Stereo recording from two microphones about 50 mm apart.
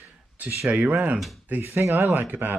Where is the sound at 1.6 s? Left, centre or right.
Right.